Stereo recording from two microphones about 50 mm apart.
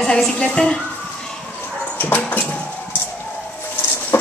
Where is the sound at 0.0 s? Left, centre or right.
Centre.